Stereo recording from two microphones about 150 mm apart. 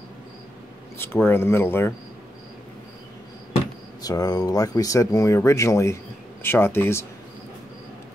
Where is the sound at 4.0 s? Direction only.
25° left (ahead or behind).